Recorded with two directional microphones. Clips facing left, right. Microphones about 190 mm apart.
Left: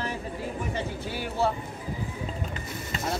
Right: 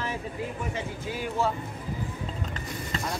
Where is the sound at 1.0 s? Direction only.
35° left (ahead or behind).